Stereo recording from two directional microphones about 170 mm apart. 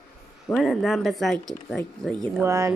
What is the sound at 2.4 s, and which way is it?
Speech, 15° right (ahead or behind).